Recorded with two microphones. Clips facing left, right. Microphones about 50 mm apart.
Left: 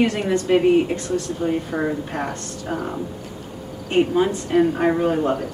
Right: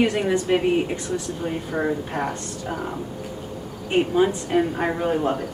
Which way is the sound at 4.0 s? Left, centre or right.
Centre.